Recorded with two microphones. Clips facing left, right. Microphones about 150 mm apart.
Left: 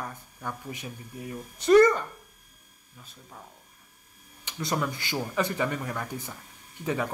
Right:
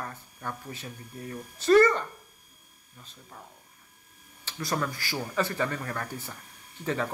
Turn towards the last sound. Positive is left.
turn(degrees=15)  # may be behind; listen again after turning